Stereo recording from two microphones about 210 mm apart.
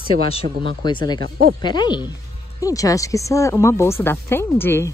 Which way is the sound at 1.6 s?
20° left (ahead or behind).